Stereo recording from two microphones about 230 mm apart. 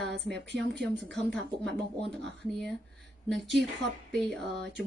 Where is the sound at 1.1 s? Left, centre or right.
Centre.